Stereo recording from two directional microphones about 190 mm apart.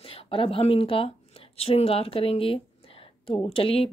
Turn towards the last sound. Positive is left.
turn(degrees=30)  # may be behind; listen again after turning